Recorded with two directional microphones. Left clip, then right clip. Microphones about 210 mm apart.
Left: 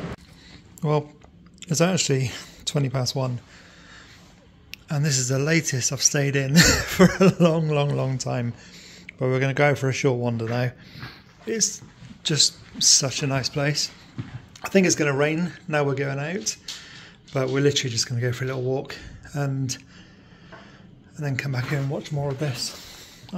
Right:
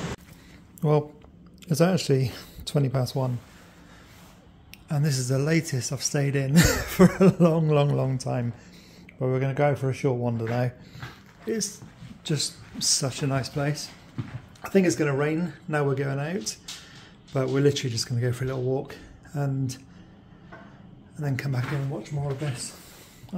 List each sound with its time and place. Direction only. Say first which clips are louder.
0.7 s speech: even; 15° right (ahead or behind)
4.6 s speech: left 3 dB; 5° right (ahead or behind)
7.6 s speech: right 1 dB; 20° right (ahead or behind)
8.0 s speech: left 1 dB; 5° right (ahead or behind)
21.2 s speech: left 3 dB; 5° right (ahead or behind)